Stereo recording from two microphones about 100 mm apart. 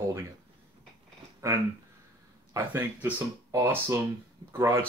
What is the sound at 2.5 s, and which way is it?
Speech, 20° right (ahead or behind).